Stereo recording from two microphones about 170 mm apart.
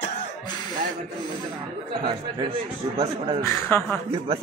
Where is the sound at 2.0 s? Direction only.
30° right (ahead or behind).